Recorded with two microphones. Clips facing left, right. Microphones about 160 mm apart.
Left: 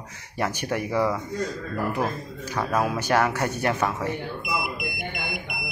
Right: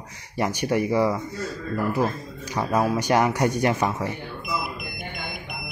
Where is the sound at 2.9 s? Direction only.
15° right (ahead or behind).